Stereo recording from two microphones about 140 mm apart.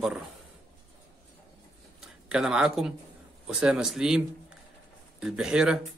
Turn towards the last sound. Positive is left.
turn(degrees=-5)  # may be behind; listen again after turning